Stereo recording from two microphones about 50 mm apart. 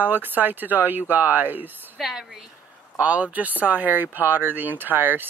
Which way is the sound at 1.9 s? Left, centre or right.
Centre.